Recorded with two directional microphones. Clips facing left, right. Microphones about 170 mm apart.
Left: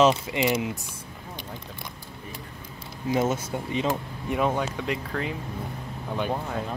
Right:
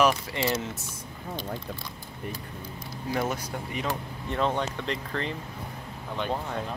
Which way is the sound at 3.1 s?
20° left (ahead or behind).